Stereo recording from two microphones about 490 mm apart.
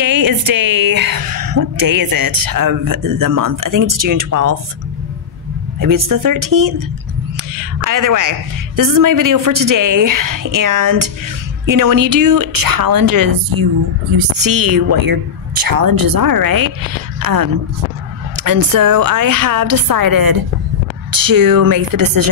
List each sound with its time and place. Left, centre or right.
0.0 s speech: right
5.8 s a woman's voice: right